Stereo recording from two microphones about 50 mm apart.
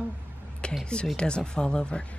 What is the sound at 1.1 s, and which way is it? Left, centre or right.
Speech, centre.